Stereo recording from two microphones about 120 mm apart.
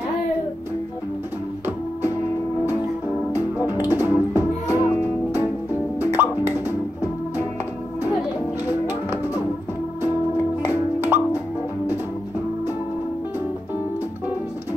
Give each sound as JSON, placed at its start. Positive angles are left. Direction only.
{"t": 3.3, "sound": "music", "side_deg": -15}
{"t": 5.9, "sound": "music", "side_deg": -15}
{"t": 8.8, "sound": "music", "side_deg": -15}
{"t": 10.6, "sound": "music", "side_deg": -15}